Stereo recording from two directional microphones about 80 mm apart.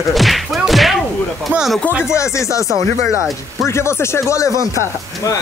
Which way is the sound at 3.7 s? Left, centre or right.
Left.